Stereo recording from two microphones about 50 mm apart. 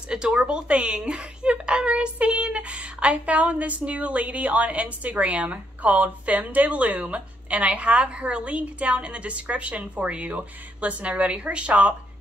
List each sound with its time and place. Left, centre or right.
0.1 s a woman's voice: centre